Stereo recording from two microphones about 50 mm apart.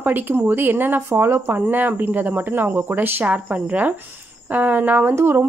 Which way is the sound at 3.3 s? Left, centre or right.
Right.